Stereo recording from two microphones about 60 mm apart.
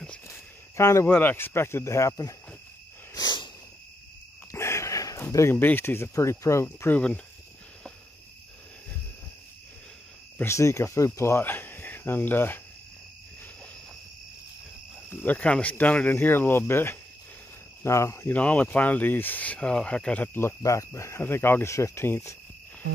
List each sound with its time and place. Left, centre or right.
0.3 s a sound: left
1.0 s speech: left
3.2 s cricket: left
4.5 s wheeze: left
5.5 s speech: left
10.4 s speech: left
11.4 s a sound: left
15.0 s speech: left
17.8 s speech: left
18.3 s speech: left
20.6 s speech: left
21.2 s speech: left
21.7 s speech: left